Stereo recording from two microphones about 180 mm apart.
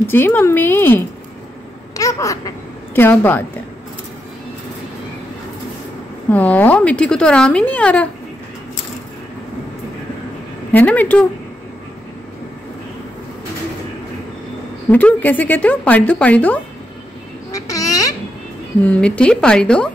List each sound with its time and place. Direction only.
0.1 s speech: 10° left (ahead or behind)
2.0 s babbling: 20° left (ahead or behind)
6.3 s speech: 10° left (ahead or behind)
10.7 s speech: 10° left (ahead or behind)
14.9 s speech: 10° left (ahead or behind)
17.5 s a sound: 20° left (ahead or behind)
18.8 s a woman's voice: 5° left (ahead or behind)